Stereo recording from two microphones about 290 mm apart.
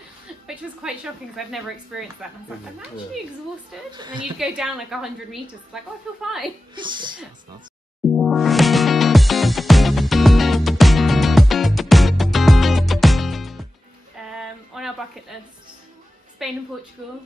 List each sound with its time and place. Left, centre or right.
0.8 s a woman's voice: centre
3.9 s speech: centre
4.2 s a woman's voice: centre
6.7 s speech: centre
8.1 s music: centre
14.2 s a sound: centre
16.4 s a woman's voice: centre